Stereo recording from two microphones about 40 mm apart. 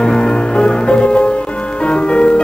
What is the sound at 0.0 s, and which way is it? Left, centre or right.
Music, centre.